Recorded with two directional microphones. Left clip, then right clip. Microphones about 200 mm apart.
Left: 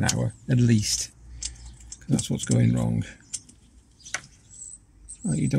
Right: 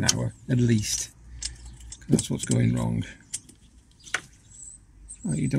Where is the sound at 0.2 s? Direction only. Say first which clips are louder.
Left 1 dB; 40° left (ahead or behind).